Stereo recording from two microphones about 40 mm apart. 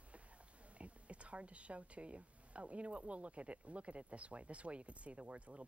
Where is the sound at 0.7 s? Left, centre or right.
Right.